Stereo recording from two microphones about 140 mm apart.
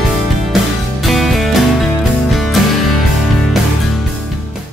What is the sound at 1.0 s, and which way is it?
Music, centre (ahead or behind).